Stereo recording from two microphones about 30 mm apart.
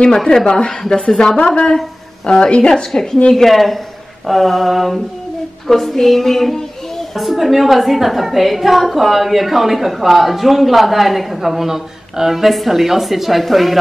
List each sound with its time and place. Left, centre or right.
0.1 s a woman's voice: centre
0.5 s a woman's voice: left
2.7 s a woman's voice: centre
3.4 s a woman's voice: centre
7.2 s a woman's voice: centre